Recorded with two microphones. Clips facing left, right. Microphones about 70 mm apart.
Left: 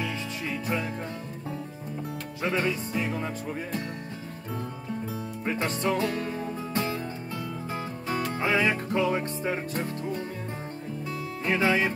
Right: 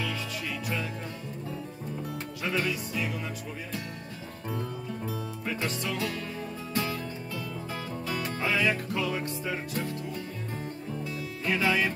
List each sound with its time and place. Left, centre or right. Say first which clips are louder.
0.0 s music: left 2 dB; left
2.4 s music: left 3 dB; left
5.4 s music: left 6 dB; left